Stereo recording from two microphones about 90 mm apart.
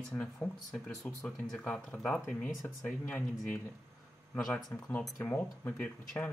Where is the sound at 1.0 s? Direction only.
35° left (ahead or behind).